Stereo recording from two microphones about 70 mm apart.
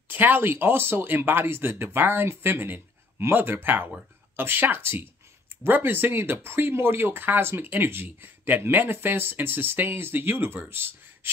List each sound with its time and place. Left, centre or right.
0.1 s speech: right